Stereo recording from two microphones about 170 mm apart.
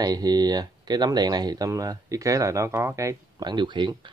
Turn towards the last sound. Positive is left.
turn(degrees=-25)  # may be behind; listen again after turning